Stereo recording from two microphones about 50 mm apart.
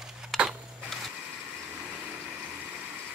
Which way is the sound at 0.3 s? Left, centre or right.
Centre.